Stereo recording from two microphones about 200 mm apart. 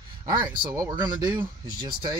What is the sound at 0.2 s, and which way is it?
Speech, 20° right (ahead or behind).